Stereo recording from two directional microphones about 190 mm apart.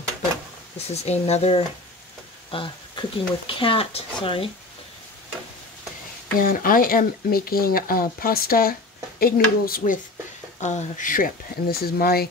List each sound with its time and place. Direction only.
0.8 s speech: 35° left (ahead or behind)
6.4 s speech: 50° left (ahead or behind)
10.6 s speech: 40° left (ahead or behind); by 12.3 s 55° left (ahead or behind)